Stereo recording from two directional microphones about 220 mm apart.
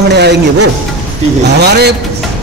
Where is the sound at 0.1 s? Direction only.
50° right (ahead or behind).